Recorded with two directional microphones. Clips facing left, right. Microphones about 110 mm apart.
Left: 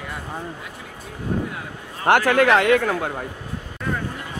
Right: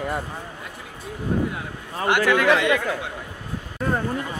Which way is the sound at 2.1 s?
45° left (ahead or behind).